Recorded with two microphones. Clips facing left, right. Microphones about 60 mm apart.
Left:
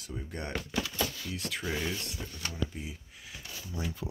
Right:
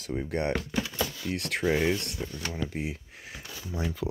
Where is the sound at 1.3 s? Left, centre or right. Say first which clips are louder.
Right 6 dB; right.